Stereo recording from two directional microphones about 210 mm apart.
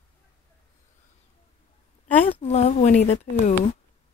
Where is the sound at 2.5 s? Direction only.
30° left (ahead or behind).